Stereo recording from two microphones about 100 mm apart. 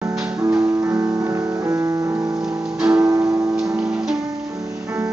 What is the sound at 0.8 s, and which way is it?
Music, 30° right (ahead or behind).